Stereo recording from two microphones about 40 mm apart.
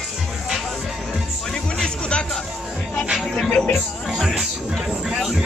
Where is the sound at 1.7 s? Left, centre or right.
Left.